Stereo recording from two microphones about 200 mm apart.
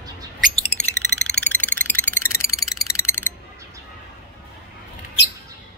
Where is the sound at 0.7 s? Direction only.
35° left (ahead or behind).